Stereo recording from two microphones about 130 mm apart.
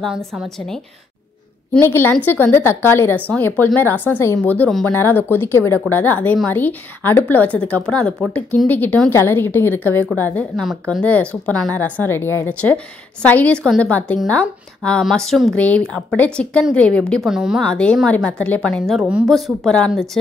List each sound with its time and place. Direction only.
0.0 s a woman's voice: centre (ahead or behind)
1.8 s a woman's voice: 15° left (ahead or behind)
4.6 s a woman's voice: centre (ahead or behind)
4.9 s a woman's voice: 15° left (ahead or behind)
10.5 s a woman's voice: centre (ahead or behind)
17.1 s a woman's voice: 5° right (ahead or behind)
17.6 s a woman's voice: 5° left (ahead or behind)